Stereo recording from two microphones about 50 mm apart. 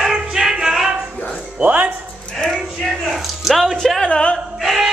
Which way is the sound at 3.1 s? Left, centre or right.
Centre.